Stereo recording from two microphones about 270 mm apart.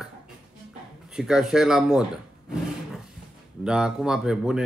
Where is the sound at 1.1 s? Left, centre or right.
Centre.